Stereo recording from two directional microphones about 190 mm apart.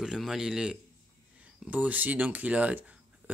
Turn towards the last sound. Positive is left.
turn(degrees=-5)  # may be behind; listen again after turning